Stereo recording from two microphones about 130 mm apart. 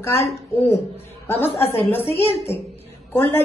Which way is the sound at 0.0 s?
20° left (ahead or behind).